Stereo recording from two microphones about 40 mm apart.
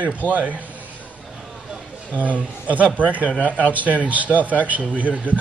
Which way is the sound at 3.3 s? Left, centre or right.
Left.